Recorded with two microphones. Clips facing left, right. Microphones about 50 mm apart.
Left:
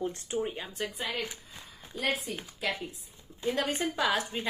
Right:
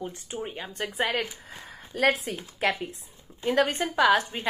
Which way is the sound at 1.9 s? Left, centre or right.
Right.